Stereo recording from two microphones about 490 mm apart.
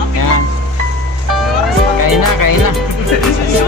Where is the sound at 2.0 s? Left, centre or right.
Left.